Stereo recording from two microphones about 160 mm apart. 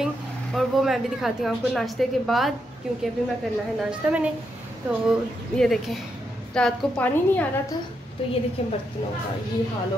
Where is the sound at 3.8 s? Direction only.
5° right (ahead or behind).